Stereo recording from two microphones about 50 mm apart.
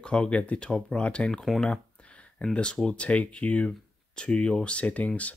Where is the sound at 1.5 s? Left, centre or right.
Centre.